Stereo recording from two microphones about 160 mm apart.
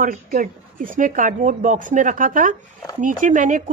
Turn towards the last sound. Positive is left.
turn(degrees=-55)  # may be behind; listen again after turning